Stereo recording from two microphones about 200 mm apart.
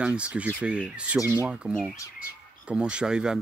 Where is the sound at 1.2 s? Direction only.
15° left (ahead or behind).